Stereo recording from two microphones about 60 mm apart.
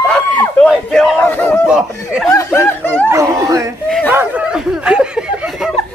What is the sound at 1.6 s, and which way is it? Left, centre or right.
Snicker, centre.